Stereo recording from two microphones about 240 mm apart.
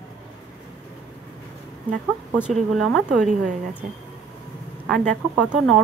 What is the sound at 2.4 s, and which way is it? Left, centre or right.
Speech, centre.